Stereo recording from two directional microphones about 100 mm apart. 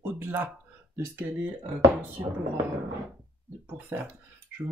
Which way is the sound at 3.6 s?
20° right (ahead or behind).